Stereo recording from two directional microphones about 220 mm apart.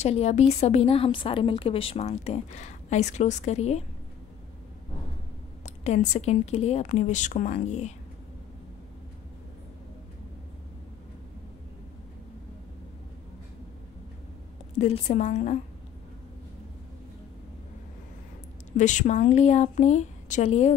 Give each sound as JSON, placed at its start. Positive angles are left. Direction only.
{"t": 0.0, "sound": "a woman's voice", "side_deg": 30}
{"t": 5.9, "sound": "a woman's voice", "side_deg": 30}
{"t": 14.8, "sound": "a woman's voice", "side_deg": 30}
{"t": 18.8, "sound": "a woman's voice", "side_deg": 35}